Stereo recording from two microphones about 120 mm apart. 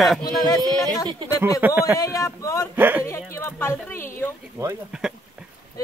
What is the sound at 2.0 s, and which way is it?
Speech, 25° left (ahead or behind).